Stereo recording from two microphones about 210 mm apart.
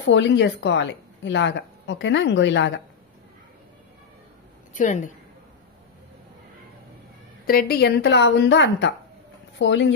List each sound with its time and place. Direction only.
0.1 s a woman's voice: 60° left (ahead or behind)
4.7 s a woman's voice: 35° left (ahead or behind)
7.4 s a woman's voice: 45° left (ahead or behind)